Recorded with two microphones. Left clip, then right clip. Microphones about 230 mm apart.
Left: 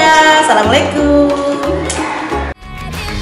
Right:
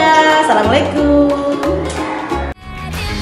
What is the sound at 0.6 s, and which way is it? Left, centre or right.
Music, centre.